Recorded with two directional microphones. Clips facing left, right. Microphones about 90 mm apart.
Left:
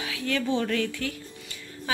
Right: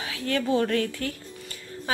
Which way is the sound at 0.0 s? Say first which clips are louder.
Right 1 dB; 35° right (ahead or behind).